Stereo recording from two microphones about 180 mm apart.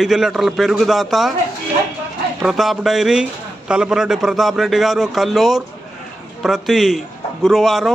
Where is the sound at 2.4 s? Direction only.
Centre (ahead or behind).